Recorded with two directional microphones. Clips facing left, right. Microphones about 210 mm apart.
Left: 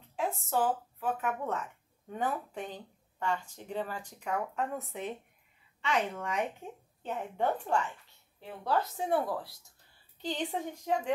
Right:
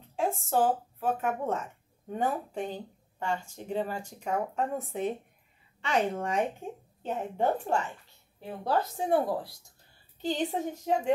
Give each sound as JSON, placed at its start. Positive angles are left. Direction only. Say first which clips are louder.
{"t": 0.1, "sound": "a woman's voice", "louder": "right 4 dB", "side_deg": -30}